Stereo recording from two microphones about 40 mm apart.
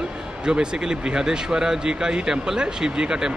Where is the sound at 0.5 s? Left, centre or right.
Centre.